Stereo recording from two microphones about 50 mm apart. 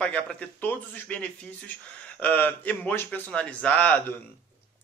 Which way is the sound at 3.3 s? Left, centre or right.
Left.